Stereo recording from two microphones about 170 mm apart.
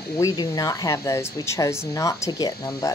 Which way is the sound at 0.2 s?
20° left (ahead or behind).